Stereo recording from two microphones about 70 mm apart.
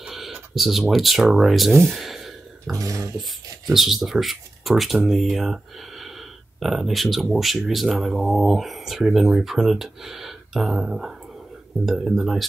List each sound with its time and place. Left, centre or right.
0.0 s speech: centre
2.7 s a sound: right
3.2 s speech: centre